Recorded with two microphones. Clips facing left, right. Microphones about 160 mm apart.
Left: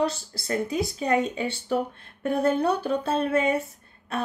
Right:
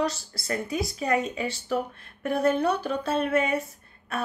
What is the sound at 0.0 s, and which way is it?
Speech, 30° left (ahead or behind).